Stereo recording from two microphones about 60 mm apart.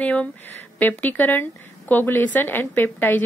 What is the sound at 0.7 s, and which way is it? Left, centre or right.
A woman's voice, left.